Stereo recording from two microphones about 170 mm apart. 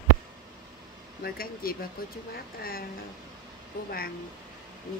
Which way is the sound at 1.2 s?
60° left (ahead or behind).